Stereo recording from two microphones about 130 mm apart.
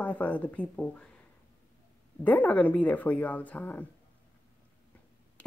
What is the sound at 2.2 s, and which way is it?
A woman's voice, 10° left (ahead or behind).